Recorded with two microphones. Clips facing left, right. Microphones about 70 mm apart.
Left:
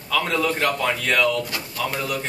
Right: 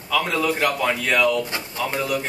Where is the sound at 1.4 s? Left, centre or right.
Right.